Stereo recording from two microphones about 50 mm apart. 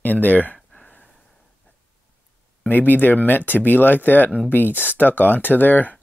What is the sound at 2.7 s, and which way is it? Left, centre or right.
Speech, left.